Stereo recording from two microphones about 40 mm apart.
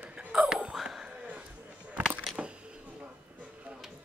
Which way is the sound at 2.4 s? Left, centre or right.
Right.